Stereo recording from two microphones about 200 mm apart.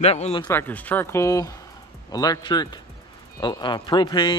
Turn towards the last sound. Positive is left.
turn(degrees=20)  # may be behind; listen again after turning